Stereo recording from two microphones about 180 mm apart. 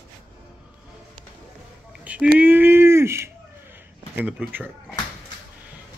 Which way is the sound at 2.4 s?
10° right (ahead or behind).